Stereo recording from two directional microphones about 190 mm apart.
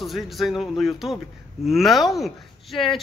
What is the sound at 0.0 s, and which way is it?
A man's voice, centre (ahead or behind).